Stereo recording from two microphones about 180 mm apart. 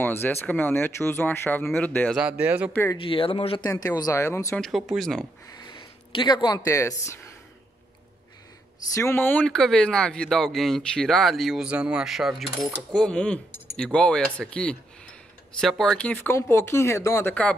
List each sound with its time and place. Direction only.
0.0 s speech: 10° left (ahead or behind)
2.1 s speech: 5° right (ahead or behind)
2.7 s speech: 15° left (ahead or behind)
3.0 s speech: 30° left (ahead or behind)
4.6 s speech: centre (ahead or behind)
5.5 s speech: 25° left (ahead or behind)
8.9 s speech: 15° left (ahead or behind)